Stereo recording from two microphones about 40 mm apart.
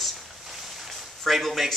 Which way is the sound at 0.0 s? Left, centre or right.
Centre.